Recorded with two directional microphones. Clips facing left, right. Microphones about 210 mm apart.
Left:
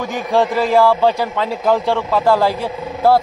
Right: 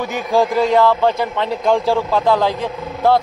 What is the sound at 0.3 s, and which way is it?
A man's voice, centre (ahead or behind).